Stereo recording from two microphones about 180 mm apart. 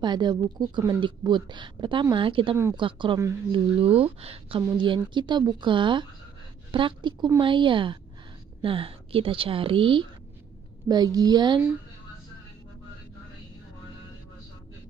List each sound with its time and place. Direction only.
0.0 s a woman's voice: 25° right (ahead or behind)